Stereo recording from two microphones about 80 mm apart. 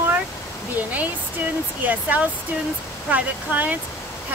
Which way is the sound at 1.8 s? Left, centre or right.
Right.